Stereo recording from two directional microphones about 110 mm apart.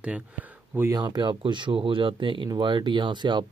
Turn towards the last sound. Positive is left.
turn(degrees=-45)  # may be behind; listen again after turning